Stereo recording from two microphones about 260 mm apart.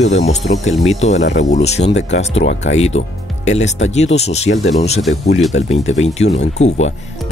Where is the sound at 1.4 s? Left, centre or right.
Left.